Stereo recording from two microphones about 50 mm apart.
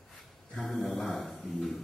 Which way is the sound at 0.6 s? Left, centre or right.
Centre.